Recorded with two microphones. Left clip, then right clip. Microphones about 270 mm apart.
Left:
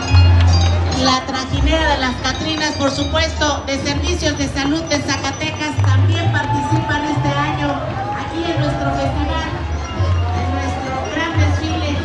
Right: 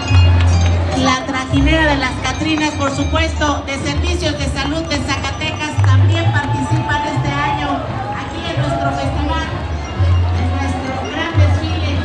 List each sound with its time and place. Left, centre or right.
0.9 s a woman's voice: right